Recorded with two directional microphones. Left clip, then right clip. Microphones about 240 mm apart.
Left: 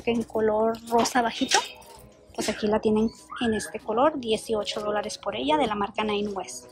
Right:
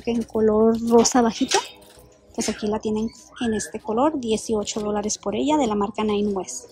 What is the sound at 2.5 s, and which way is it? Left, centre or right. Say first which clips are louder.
Speech: left 2 dB; centre.